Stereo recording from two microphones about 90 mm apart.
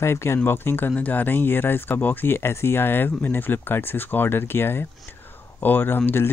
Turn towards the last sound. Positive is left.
turn(degrees=25)  # may be behind; listen again after turning